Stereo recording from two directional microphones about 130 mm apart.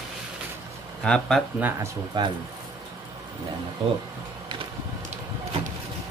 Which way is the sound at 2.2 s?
35° right (ahead or behind).